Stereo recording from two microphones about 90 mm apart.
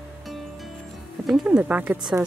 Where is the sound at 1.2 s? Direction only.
Centre (ahead or behind).